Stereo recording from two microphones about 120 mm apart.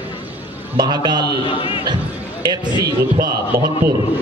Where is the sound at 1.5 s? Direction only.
50° left (ahead or behind).